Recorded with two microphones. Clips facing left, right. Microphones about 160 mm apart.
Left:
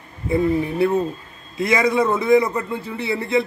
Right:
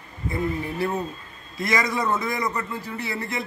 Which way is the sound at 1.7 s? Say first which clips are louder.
Left 6 dB; 25° left (ahead or behind).